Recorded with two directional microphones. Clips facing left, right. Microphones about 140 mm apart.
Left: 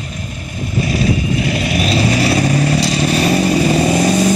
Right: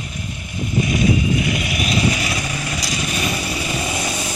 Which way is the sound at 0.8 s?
30° left (ahead or behind).